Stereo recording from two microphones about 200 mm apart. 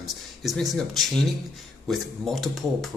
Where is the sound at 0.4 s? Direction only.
Centre (ahead or behind).